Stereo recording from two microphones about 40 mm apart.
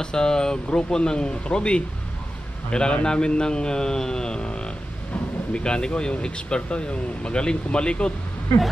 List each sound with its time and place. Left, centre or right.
0.0 s speech: centre